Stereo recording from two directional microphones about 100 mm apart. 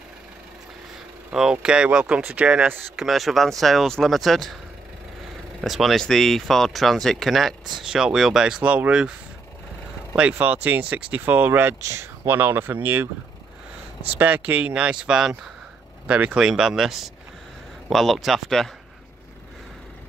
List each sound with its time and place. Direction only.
1.3 s speech: 5° right (ahead or behind)
3.1 s speech: centre (ahead or behind)
5.6 s speech: centre (ahead or behind)
10.1 s speech: 15° right (ahead or behind)
14.1 s speech: 15° right (ahead or behind); by 18.7 s 5° left (ahead or behind)